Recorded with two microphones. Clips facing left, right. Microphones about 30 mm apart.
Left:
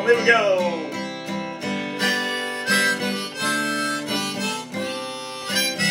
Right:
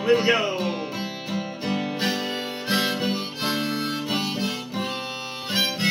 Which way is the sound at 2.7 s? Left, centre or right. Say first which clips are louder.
Left 3 dB; left.